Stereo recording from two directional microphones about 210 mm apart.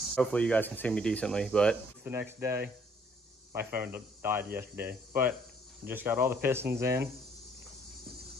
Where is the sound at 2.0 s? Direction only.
10° right (ahead or behind).